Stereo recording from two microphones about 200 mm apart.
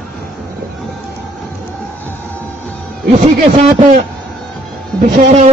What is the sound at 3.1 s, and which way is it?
Speech, 35° right (ahead or behind).